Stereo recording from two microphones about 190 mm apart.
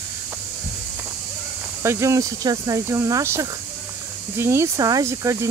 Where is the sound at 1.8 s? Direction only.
15° right (ahead or behind).